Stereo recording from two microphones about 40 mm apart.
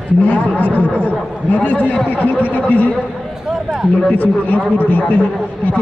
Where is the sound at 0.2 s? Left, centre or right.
Left.